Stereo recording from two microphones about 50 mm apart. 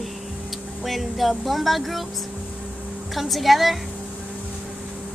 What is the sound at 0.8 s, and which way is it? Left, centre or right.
Music, centre.